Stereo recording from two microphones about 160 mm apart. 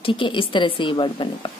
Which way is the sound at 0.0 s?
30° left (ahead or behind).